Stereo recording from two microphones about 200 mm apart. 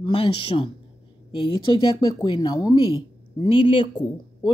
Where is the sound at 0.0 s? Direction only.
25° left (ahead or behind).